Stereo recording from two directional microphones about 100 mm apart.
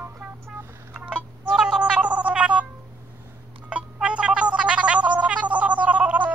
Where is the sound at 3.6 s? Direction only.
10° right (ahead or behind).